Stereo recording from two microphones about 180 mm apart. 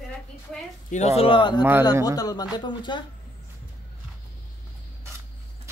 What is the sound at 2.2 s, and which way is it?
Speech, 20° left (ahead or behind).